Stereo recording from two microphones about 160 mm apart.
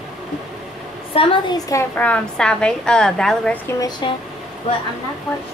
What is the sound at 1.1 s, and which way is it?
Speech, 30° left (ahead or behind).